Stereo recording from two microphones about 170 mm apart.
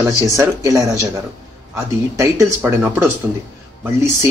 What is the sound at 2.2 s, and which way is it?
Speech, 15° right (ahead or behind).